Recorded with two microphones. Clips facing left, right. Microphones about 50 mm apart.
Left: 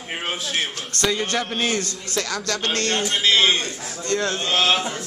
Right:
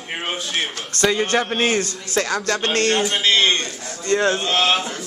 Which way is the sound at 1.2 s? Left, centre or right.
Centre.